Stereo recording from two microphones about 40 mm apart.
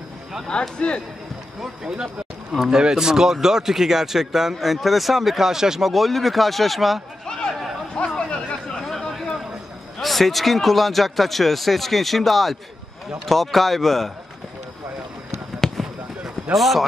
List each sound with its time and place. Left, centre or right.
0.5 s a man's voice: left
2.6 s a man's voice: centre
6.0 s a man's voice: centre
7.9 s chatter: left
8.8 s a sound: centre
9.9 s a man's voice: centre
15.6 s fireworks: centre
16.5 s a man's voice: centre